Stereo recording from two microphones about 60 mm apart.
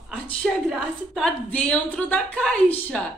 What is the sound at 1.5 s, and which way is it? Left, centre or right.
A woman's voice, centre.